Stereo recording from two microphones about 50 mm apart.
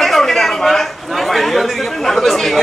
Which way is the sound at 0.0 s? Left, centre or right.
Centre.